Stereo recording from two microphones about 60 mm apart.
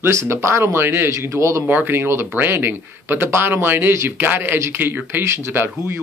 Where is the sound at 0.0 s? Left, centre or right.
Right.